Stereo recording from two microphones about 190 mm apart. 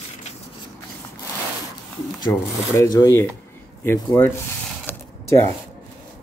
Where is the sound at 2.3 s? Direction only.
15° left (ahead or behind).